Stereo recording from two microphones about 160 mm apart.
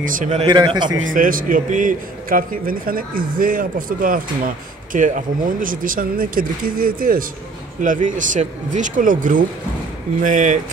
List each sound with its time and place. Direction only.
0.0 s a man's voice: 55° right (ahead or behind)
0.5 s a man's voice: 30° right (ahead or behind)
1.1 s a man's voice: 60° right (ahead or behind)